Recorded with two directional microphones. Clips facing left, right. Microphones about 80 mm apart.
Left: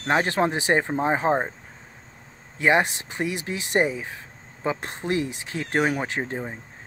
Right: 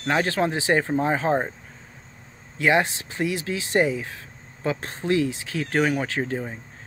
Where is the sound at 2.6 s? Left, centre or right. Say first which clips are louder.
Even; left.